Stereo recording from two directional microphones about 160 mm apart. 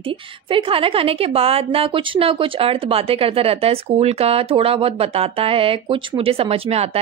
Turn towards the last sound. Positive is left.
turn(degrees=-40)  # may be behind; listen again after turning